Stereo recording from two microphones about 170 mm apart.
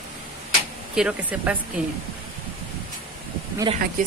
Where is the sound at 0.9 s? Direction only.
5° right (ahead or behind).